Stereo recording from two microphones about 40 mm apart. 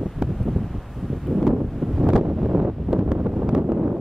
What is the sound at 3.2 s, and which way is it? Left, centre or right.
Wind noise, right.